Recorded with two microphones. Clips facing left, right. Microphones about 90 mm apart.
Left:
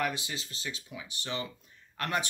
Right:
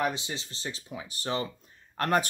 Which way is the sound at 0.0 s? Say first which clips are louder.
Right 3 dB; 25° right (ahead or behind).